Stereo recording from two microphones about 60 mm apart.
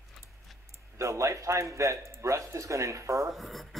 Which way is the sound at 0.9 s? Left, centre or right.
Right.